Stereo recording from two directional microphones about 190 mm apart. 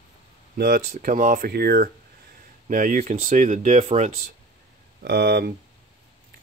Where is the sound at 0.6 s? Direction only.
45° right (ahead or behind).